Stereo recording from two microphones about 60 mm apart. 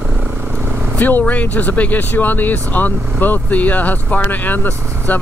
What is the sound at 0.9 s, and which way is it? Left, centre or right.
Speech, left.